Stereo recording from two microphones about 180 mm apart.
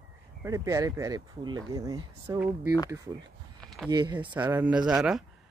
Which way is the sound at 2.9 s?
20° right (ahead or behind).